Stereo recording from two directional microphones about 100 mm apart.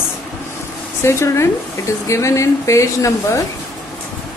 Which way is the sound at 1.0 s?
30° left (ahead or behind).